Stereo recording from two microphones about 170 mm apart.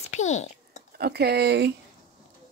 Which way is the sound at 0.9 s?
70° right (ahead or behind).